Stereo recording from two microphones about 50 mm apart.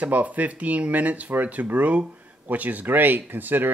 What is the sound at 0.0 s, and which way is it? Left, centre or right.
Speech, right.